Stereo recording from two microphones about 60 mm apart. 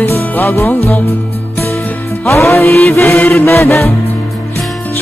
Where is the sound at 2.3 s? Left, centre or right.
Left.